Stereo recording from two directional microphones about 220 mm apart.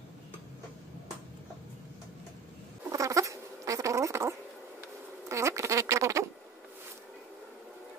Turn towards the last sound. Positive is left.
turn(degrees=-15)  # may be behind; listen again after turning